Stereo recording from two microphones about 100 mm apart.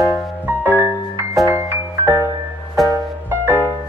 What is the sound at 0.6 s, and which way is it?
Music, 20° right (ahead or behind).